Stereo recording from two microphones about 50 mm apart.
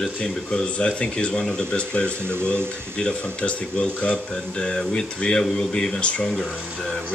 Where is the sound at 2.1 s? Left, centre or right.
Right.